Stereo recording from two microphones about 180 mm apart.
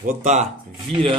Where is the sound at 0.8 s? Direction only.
30° right (ahead or behind).